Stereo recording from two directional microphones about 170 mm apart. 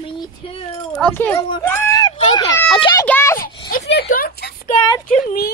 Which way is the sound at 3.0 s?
15° left (ahead or behind).